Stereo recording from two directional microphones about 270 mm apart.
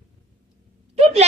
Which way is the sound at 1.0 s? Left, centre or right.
Right.